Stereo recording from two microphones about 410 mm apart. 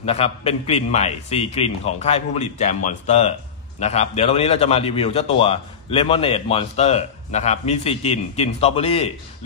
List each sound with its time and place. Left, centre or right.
0.0 s a man's voice: centre